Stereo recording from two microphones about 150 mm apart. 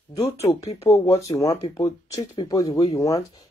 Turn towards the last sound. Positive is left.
turn(degrees=20)  # may be behind; listen again after turning